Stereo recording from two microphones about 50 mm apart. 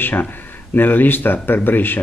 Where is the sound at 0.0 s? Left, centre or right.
Left.